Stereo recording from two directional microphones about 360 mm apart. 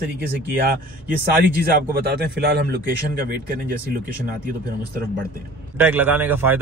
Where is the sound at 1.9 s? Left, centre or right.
Right.